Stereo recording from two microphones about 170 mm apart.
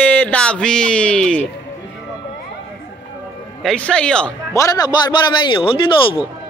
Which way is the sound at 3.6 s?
5° left (ahead or behind).